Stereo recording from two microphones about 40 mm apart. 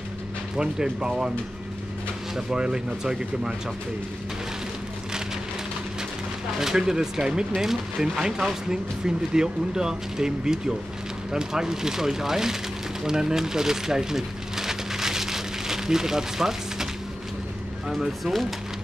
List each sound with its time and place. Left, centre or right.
0.6 s speech: centre
2.5 s speech: centre
6.6 s speech: centre
13.0 s a sound: centre
17.8 s speech: centre